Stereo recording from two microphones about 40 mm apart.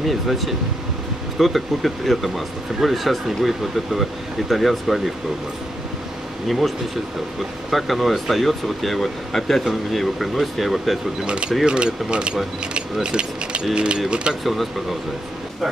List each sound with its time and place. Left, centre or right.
0.0 s speech: centre
6.4 s speech: centre
7.7 s speech: centre
11.2 s speech: right
14.4 s speech: centre